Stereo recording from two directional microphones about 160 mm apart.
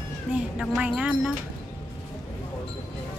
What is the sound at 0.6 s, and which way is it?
Speech, 5° right (ahead or behind).